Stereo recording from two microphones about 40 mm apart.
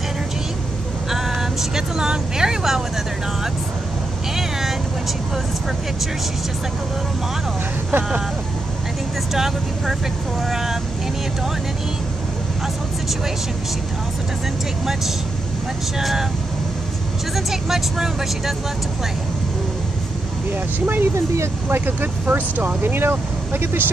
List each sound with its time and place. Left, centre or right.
1.1 s speech: centre
4.4 s vehicle: centre
7.9 s speech: right
9.3 s speech: centre
16.0 s speech: centre
17.5 s speech: centre
20.8 s speech: right